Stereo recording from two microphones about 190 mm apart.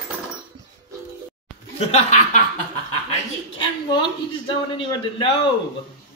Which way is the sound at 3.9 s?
25° left (ahead or behind).